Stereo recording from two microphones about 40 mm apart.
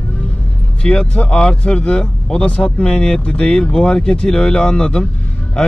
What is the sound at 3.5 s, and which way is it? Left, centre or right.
Speech, centre.